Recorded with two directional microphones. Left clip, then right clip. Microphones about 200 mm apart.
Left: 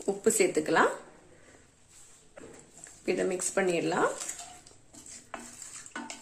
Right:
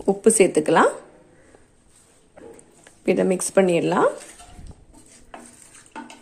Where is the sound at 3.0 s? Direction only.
40° right (ahead or behind).